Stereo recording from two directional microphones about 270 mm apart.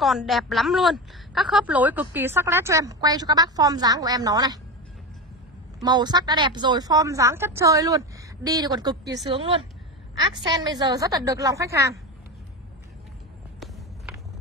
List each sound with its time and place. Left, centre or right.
0.0 s a woman's voice: centre
5.8 s a woman's voice: centre